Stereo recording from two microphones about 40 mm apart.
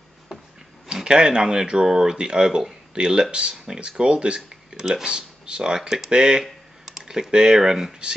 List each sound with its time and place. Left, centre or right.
1.0 s speech: centre
6.4 s computer keyboard: centre
7.1 s speech: centre